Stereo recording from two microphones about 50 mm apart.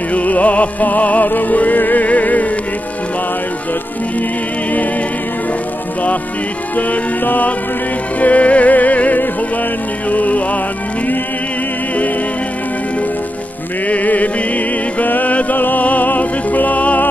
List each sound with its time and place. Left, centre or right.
0.1 s music: left
6.9 s music: left
13.8 s music: left